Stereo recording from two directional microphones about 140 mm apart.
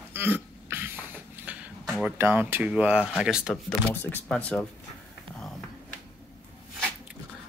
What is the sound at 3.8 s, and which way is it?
Speech, 5° left (ahead or behind).